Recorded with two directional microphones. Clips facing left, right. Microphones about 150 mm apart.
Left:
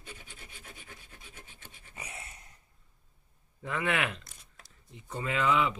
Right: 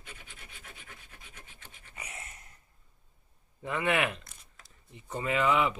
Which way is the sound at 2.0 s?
25° left (ahead or behind).